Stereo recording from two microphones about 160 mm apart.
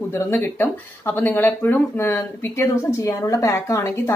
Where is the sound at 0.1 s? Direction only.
15° left (ahead or behind).